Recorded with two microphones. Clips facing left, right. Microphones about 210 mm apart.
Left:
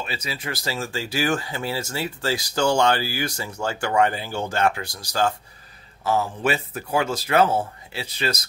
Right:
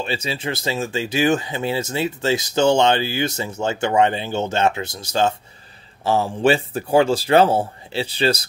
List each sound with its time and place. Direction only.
0.0 s speech: 25° right (ahead or behind)